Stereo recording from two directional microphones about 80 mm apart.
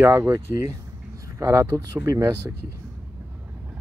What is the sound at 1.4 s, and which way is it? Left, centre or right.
Speech, right.